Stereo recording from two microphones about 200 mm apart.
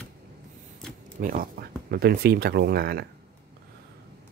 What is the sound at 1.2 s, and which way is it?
Speech, 45° right (ahead or behind).